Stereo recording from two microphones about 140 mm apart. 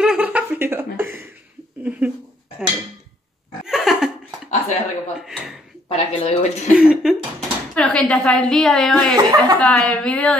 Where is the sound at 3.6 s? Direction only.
5° right (ahead or behind).